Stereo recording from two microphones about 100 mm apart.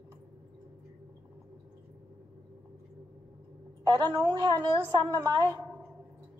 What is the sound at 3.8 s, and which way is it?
A woman's voice, 45° right (ahead or behind).